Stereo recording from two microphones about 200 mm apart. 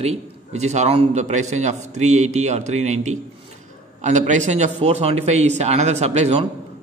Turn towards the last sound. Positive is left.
turn(degrees=-30)  # may be behind; listen again after turning